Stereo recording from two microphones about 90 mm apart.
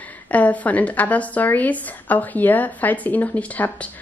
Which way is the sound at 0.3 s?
15° left (ahead or behind).